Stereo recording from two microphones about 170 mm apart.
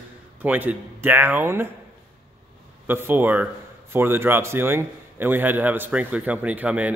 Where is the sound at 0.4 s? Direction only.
10° right (ahead or behind).